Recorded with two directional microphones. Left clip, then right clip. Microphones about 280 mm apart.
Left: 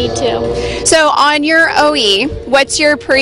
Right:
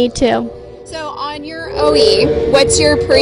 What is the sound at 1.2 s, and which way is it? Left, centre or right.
Speech, left.